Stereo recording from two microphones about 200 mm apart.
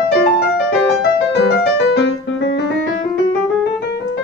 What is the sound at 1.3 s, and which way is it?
Music, 60° left (ahead or behind).